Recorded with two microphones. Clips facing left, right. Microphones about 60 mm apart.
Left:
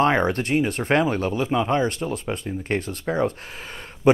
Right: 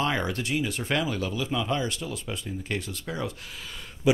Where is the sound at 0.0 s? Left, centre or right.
Left.